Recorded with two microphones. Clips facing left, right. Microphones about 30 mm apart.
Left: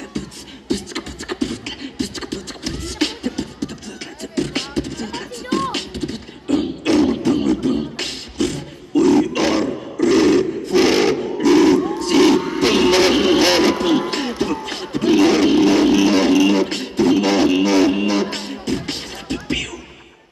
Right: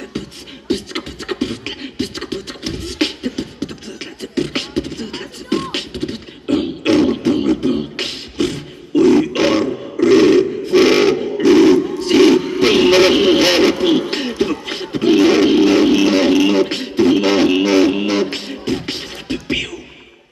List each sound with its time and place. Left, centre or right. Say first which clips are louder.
0.7 s beatboxing: right 3 dB; centre
9.9 s a sound: right 4 dB; centre
12.0 s crowd: right 3 dB; centre
12.5 s music: right 3 dB; centre
16.1 s beatboxing: right 1 dB; centre